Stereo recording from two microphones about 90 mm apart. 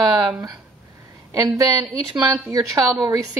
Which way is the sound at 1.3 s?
35° right (ahead or behind).